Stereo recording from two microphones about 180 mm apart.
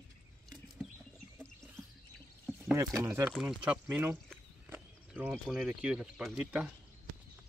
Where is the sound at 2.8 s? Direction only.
15° right (ahead or behind).